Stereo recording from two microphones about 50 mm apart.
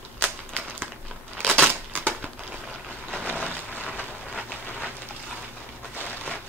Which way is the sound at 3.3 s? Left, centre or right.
Left.